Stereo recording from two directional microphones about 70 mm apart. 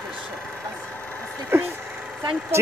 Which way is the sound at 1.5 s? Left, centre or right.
Right.